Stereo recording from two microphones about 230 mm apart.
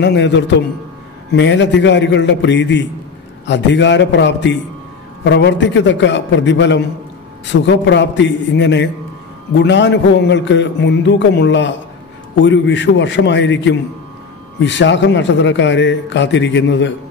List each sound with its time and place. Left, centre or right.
0.0 s speech: left